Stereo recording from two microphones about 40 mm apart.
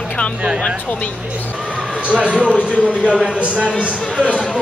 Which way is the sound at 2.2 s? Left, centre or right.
Right.